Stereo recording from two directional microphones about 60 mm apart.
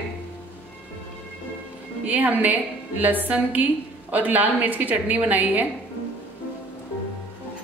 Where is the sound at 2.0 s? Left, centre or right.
Right.